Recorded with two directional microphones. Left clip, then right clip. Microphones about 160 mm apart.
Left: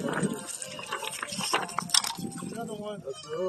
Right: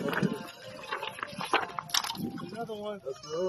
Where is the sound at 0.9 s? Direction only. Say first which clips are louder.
Left 1 dB; 25° left (ahead or behind).